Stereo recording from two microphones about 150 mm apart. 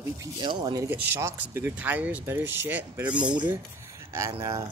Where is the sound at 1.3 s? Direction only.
10° right (ahead or behind).